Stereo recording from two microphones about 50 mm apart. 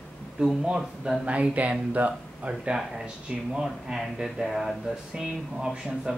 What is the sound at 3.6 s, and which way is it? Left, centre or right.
Speech, centre.